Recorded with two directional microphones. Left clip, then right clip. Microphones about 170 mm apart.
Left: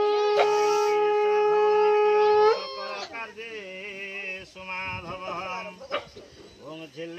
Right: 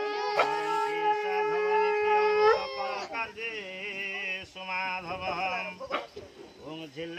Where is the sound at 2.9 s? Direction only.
Centre (ahead or behind).